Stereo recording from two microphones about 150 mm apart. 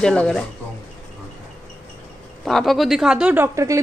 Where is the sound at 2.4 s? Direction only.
Centre (ahead or behind).